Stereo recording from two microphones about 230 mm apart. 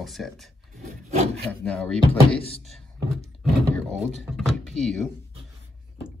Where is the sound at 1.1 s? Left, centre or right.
Right.